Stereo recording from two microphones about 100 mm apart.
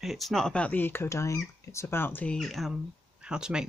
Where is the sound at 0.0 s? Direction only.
Centre (ahead or behind); by 2.3 s 20° left (ahead or behind).